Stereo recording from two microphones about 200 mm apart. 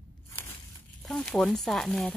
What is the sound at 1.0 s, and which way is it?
Speech, centre (ahead or behind).